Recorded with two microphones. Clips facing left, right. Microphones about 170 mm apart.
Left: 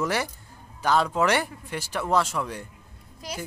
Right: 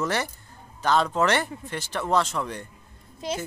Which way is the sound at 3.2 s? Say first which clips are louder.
Right 7 dB; 25° right (ahead or behind).